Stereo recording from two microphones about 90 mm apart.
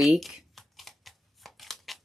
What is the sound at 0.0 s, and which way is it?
Speech, centre (ahead or behind).